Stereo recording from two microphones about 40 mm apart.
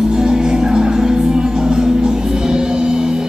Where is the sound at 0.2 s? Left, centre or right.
Centre.